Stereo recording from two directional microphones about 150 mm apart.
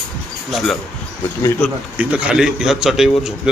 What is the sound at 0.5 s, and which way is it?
A man's voice, centre (ahead or behind).